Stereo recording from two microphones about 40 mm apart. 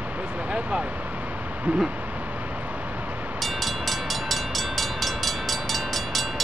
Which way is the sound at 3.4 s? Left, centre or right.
Centre.